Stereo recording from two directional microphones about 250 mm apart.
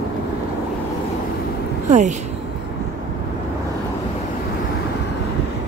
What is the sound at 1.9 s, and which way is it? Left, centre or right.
Speech, right.